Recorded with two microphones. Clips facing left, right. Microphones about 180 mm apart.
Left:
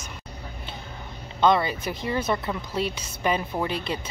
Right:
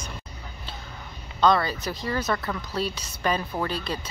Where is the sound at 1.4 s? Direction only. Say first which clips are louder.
Left 1 dB; 20° left (ahead or behind).